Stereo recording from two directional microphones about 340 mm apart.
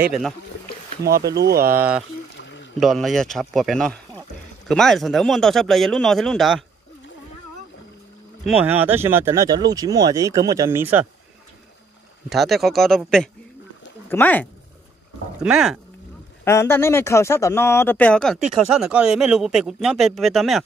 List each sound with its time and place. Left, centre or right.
1.3 s speech: right
1.7 s speech: centre
2.3 s rowboat: left
2.8 s speech: centre
8.5 s speech: centre
12.3 s speech: centre